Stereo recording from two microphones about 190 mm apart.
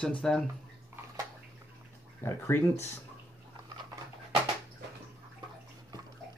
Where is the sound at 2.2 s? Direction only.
15° left (ahead or behind).